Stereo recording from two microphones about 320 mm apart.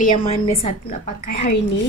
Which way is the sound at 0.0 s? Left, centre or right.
Left.